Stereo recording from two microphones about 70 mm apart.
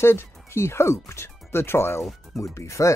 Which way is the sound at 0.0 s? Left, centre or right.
Left.